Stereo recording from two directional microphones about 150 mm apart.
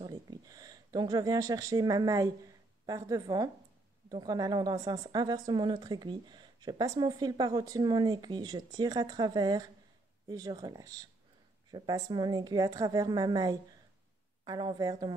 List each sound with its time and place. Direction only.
0.0 s a woman's voice: 30° right (ahead or behind)